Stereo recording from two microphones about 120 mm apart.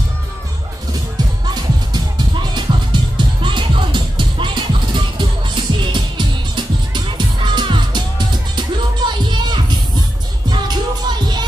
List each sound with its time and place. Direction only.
1.1 s music: 35° right (ahead or behind)